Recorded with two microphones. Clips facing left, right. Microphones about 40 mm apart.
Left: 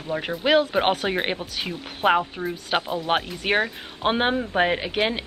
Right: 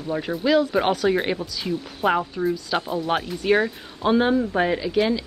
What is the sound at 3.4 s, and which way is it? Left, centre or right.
Speech, left.